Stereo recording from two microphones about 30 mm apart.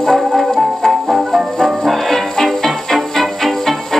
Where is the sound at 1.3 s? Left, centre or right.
Centre.